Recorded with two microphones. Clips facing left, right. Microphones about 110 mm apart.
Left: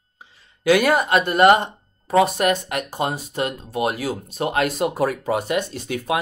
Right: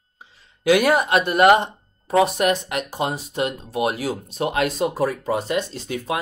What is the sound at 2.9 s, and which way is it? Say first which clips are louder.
Speech: left 1 dB; 50° left (ahead or behind).